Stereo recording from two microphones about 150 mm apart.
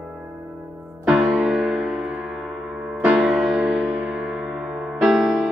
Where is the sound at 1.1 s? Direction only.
Centre (ahead or behind).